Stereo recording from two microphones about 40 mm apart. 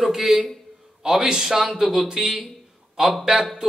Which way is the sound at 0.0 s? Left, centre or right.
Centre.